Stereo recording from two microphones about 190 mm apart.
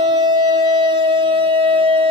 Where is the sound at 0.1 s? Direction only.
25° right (ahead or behind).